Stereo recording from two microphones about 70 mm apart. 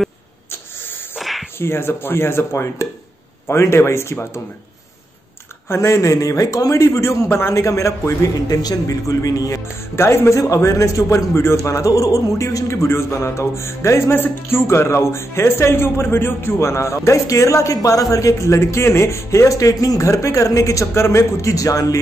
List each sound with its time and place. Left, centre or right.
1.1 s a sound: centre
1.6 s speech: left
5.7 s a man's voice: left
6.1 s a man's voice: left
9.9 s a man's voice: left